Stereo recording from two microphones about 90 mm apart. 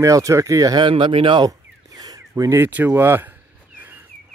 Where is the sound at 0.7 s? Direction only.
65° right (ahead or behind).